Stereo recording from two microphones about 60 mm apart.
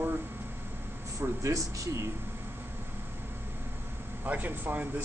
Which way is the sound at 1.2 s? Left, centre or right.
Right.